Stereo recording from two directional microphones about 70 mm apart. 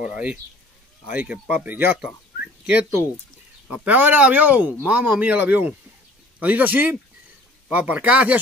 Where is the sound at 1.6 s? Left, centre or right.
Right.